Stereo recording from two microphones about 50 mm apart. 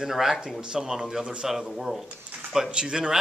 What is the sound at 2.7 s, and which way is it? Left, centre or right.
Speech, centre.